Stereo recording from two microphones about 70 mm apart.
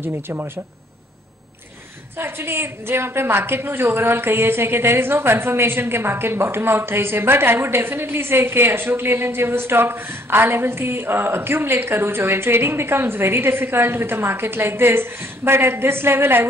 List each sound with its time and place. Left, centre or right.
0.0 s a woman's voice: right
2.1 s a woman's voice: right